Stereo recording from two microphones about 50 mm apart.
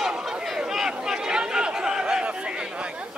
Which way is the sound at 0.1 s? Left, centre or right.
Centre.